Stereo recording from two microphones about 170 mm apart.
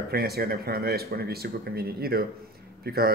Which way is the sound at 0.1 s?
65° right (ahead or behind).